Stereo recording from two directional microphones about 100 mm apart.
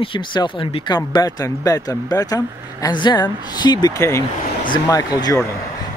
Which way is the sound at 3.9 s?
30° left (ahead or behind).